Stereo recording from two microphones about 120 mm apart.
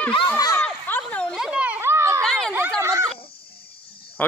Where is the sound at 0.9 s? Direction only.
10° left (ahead or behind).